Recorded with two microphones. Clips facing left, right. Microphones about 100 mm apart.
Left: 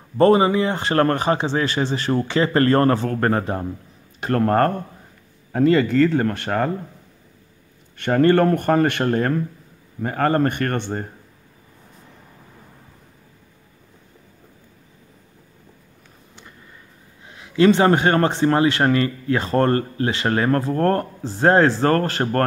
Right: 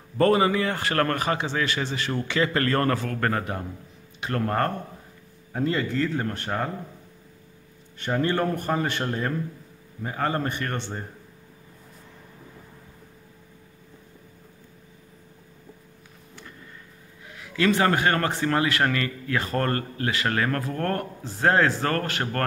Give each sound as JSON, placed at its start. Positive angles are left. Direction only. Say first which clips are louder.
{"t": 0.2, "sound": "a man's voice", "louder": "left 5 dB", "side_deg": 25}
{"t": 4.2, "sound": "speech", "louder": "left 7 dB", "side_deg": 45}
{"t": 5.5, "sound": "speech", "louder": "left 9 dB", "side_deg": 75}
{"t": 8.0, "sound": "speech", "louder": "left 9 dB", "side_deg": 60}
{"t": 17.3, "sound": "a man's voice", "louder": "left 8 dB", "side_deg": 25}